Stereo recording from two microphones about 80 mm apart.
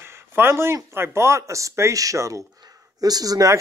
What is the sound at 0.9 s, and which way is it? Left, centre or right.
Speech, right.